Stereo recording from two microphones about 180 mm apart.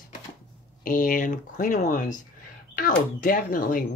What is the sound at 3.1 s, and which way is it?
Speech, 50° left (ahead or behind).